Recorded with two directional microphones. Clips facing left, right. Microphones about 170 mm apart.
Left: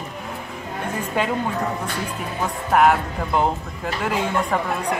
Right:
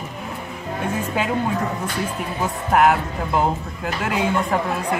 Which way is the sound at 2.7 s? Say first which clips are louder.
Even; centre (ahead or behind).